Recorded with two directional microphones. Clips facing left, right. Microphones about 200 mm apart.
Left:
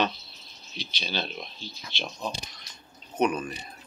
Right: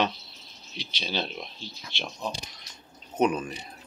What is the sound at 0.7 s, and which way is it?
Speech, 90° right.